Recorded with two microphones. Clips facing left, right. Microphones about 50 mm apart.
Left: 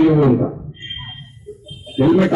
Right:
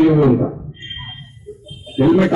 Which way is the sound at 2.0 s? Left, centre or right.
Centre.